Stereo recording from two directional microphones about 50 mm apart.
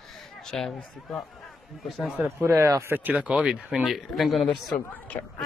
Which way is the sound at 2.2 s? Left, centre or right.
Right.